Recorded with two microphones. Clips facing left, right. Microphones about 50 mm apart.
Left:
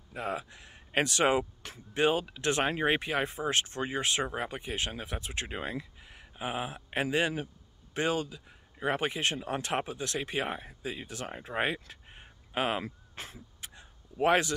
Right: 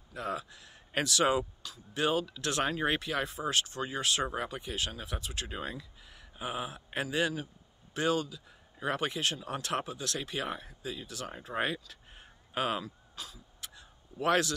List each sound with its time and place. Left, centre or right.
0.1 s speech: centre; by 1.8 s left
2.0 s speech: left
12.8 s speech: left
14.2 s speech: left